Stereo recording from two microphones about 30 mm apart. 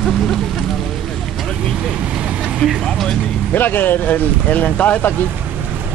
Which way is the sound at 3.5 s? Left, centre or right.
Left.